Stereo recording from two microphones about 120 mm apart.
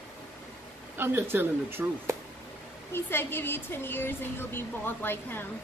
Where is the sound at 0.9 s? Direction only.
15° right (ahead or behind).